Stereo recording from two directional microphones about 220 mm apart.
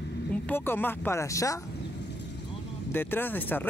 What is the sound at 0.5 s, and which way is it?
Speech, 10° left (ahead or behind).